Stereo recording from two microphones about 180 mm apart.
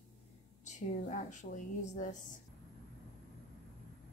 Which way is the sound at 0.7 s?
40° left (ahead or behind).